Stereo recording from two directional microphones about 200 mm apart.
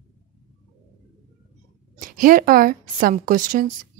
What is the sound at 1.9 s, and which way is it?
A woman's voice, 45° right (ahead or behind).